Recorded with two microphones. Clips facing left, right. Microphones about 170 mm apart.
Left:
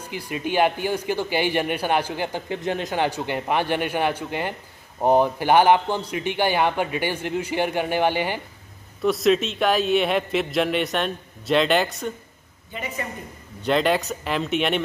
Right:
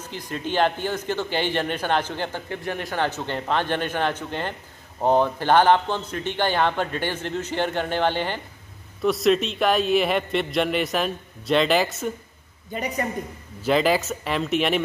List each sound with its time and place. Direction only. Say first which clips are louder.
0.1 s a man's voice: left 2 dB; 10° left (ahead or behind)
9.0 s a man's voice: even; centre (ahead or behind)
12.7 s a woman's voice: right 4 dB; 40° right (ahead or behind)
13.6 s a man's voice: even; centre (ahead or behind)